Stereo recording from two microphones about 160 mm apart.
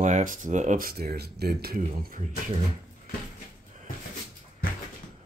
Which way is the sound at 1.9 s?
50° right (ahead or behind).